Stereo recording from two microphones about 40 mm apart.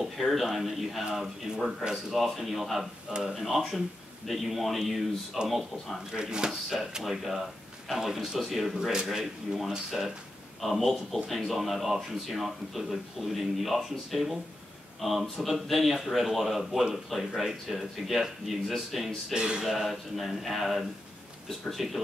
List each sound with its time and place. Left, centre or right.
0.2 s speech: centre
3.1 s speech: right
3.3 s speech: centre
6.1 s speech: right
6.5 s speech: centre
19.3 s speech: right
19.6 s speech: centre